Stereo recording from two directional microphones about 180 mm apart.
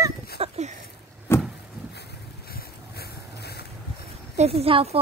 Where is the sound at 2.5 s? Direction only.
60° left (ahead or behind).